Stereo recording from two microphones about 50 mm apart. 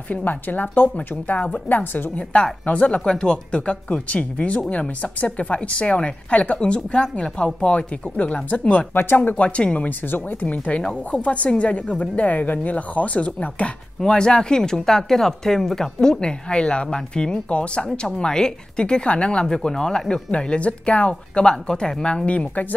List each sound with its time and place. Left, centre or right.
0.1 s a woman's voice: left
2.6 s speech: left
8.9 s speech: left
9.3 s speech: left
9.8 s a woman's voice: left
10.4 s speech: left